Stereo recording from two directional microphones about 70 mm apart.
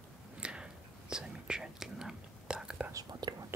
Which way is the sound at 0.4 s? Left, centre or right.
Centre.